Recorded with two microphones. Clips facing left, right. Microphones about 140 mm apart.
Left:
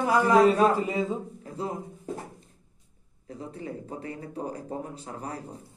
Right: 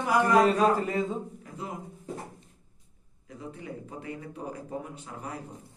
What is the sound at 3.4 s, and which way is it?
A man's voice, 35° left (ahead or behind).